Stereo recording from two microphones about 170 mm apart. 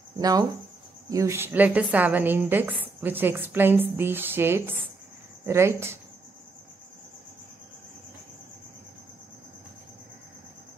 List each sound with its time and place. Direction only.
0.2 s a woman's voice: 20° right (ahead or behind)